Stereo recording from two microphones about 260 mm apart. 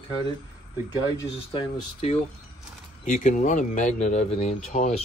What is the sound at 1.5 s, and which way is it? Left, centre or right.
Speech, left.